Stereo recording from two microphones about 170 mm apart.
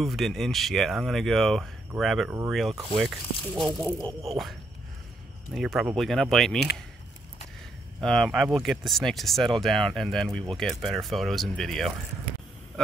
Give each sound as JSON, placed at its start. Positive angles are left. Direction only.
{"t": 0.0, "sound": "speech", "side_deg": 0}
{"t": 4.0, "sound": "speech", "side_deg": -35}
{"t": 5.5, "sound": "speech", "side_deg": 0}
{"t": 8.0, "sound": "speech", "side_deg": 5}